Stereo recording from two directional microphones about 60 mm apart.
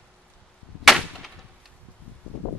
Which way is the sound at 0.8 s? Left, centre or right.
Centre.